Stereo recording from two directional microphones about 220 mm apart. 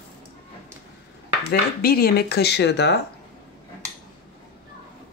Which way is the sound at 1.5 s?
45° left (ahead or behind).